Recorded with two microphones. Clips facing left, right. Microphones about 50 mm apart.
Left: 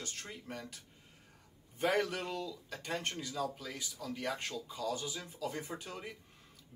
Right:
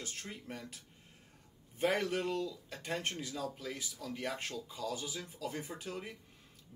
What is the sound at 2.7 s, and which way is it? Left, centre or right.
Speech, centre.